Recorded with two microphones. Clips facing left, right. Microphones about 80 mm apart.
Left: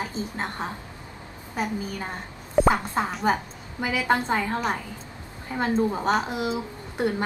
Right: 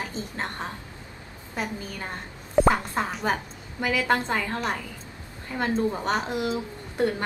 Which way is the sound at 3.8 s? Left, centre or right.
Centre.